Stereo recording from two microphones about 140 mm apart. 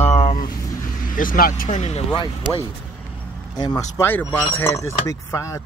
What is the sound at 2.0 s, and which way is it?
Speech, 35° left (ahead or behind).